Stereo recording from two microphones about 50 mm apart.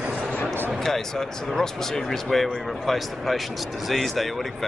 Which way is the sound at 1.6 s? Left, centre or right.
Centre.